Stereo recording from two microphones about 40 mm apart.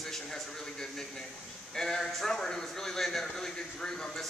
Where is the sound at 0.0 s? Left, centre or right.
Centre.